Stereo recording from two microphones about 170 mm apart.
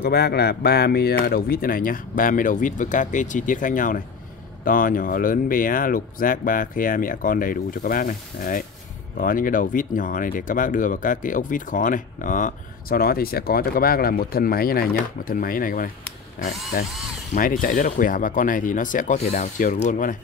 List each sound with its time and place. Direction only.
0.0 s speech: 70° left (ahead or behind); by 20.2 s 50° left (ahead or behind)